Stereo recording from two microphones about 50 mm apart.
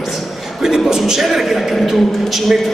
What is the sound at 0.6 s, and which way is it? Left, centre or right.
A man's voice, centre.